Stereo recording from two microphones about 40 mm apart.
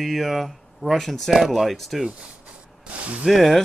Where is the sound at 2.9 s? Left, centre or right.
Right.